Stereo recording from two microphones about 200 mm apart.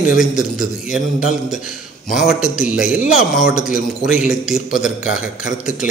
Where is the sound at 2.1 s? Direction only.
Centre (ahead or behind).